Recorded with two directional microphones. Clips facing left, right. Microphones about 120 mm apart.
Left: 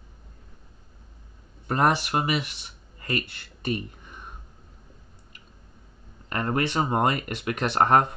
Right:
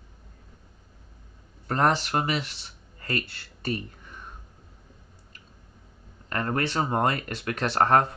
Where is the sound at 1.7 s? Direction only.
10° left (ahead or behind).